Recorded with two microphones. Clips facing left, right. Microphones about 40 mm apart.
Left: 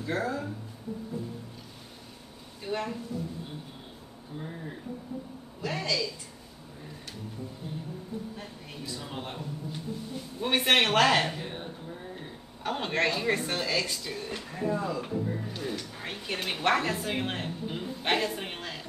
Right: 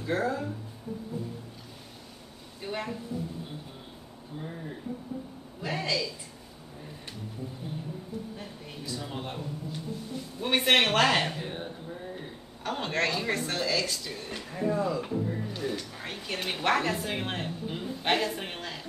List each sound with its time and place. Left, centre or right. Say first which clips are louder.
0.0 s speech: right 2 dB; centre
2.6 s a woman's voice: left 2 dB; centre
5.7 s a woman's voice: even; centre
9.0 s speech: right 1 dB; centre
10.4 s speech: even; centre